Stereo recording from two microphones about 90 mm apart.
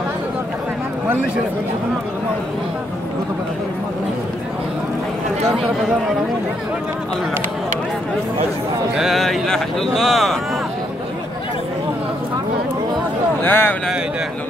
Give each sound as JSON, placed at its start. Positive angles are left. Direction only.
{"t": 8.9, "sound": "speech", "side_deg": 0}
{"t": 13.4, "sound": "speech", "side_deg": 25}